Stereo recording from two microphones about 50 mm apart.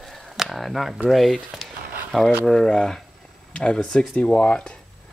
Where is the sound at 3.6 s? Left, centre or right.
Left.